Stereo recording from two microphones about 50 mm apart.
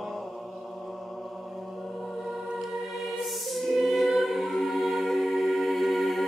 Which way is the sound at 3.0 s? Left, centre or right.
Centre.